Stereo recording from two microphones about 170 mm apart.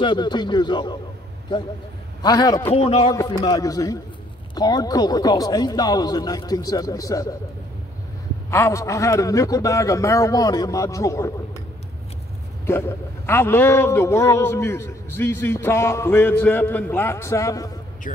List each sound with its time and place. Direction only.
0.0 s a man's voice: 25° left (ahead or behind)
2.2 s a man's voice: 20° left (ahead or behind)
2.7 s a man's voice: 35° left (ahead or behind)
3.1 s a man's voice: 20° left (ahead or behind)
8.5 s a man's voice: 15° left (ahead or behind)
12.6 s a man's voice: 15° left (ahead or behind)
18.1 s speech: 50° left (ahead or behind)